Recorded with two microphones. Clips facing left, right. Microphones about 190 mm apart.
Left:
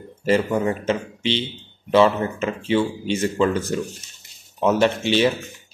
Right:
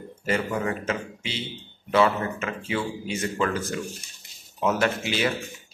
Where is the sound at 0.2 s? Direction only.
30° left (ahead or behind).